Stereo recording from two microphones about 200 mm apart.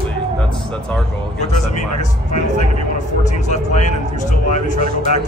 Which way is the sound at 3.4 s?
35° left (ahead or behind).